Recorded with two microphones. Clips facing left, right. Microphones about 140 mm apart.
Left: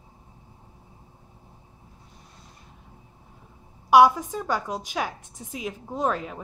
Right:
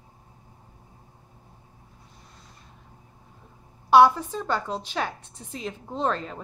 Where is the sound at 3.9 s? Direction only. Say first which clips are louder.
Even; 15° left (ahead or behind).